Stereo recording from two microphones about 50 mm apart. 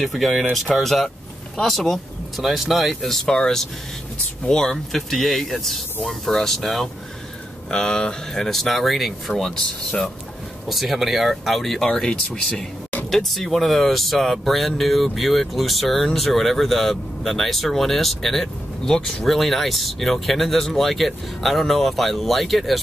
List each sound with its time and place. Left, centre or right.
0.0 s speech: centre
10.7 s speech: centre
11.9 s speech: centre
13.1 s speech: centre